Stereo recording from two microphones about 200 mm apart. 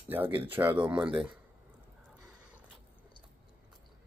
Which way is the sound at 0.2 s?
25° right (ahead or behind).